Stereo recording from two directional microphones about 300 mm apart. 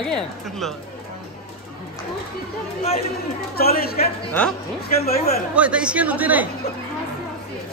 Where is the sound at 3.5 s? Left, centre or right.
Left.